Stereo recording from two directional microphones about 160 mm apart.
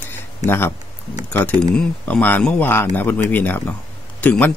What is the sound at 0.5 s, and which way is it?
A man's voice, 15° left (ahead or behind).